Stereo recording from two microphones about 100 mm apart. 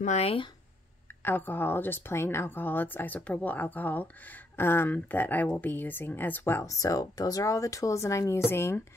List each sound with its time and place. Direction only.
0.2 s speech: 70° left (ahead or behind)
1.2 s speech: 20° left (ahead or behind)